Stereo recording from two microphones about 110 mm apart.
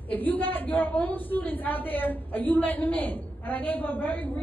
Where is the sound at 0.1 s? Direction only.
15° left (ahead or behind).